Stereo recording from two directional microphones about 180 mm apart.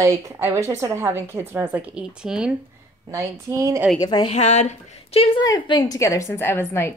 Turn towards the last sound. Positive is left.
turn(degrees=15)  # may be behind; listen again after turning